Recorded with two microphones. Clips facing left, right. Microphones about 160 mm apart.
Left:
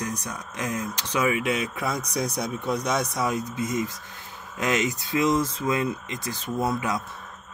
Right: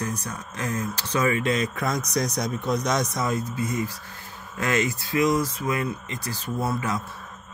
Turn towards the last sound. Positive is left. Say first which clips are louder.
# left 1 dB
turn(degrees=15)  # may be behind; listen again after turning